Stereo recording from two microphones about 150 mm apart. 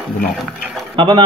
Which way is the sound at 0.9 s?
35° right (ahead or behind).